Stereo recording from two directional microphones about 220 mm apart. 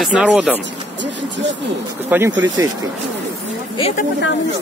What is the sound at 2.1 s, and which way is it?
Speech, 10° right (ahead or behind).